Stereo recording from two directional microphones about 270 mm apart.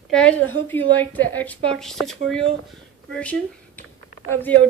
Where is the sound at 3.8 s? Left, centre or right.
Centre.